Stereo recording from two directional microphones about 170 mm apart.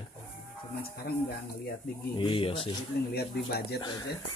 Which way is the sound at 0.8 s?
65° left (ahead or behind).